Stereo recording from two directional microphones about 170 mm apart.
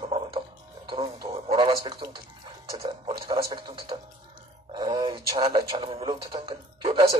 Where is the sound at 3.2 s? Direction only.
20° right (ahead or behind).